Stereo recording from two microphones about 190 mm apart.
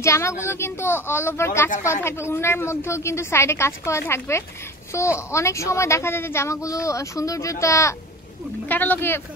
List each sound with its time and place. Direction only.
0.0 s a woman's voice: 15° left (ahead or behind)